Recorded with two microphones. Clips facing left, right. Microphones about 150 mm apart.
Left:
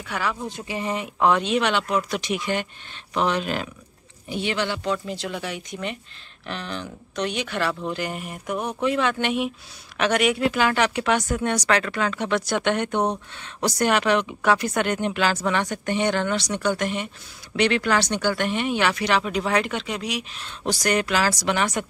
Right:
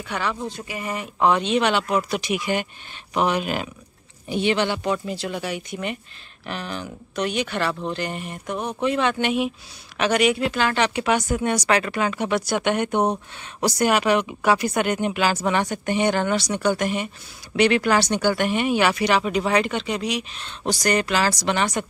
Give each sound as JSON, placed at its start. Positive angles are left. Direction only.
{"t": 0.0, "sound": "speech", "side_deg": 5}
{"t": 0.5, "sound": "speech", "side_deg": 25}
{"t": 1.0, "sound": "speech", "side_deg": 0}
{"t": 5.0, "sound": "speech", "side_deg": -5}